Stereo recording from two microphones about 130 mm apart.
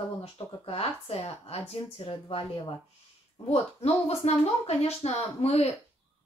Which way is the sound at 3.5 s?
55° left (ahead or behind).